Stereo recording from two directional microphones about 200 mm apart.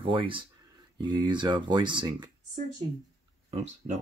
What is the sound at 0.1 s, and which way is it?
Speech, 25° right (ahead or behind).